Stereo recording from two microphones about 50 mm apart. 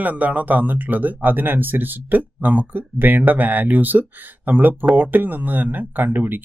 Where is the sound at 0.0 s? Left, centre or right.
Right.